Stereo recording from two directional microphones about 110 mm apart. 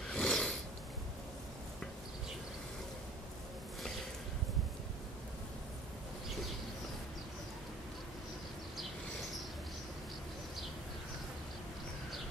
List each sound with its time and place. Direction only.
0.1 s snort: 5° left (ahead or behind)